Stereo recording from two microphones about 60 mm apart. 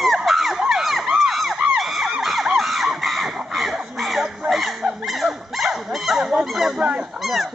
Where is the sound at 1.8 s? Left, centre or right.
Centre.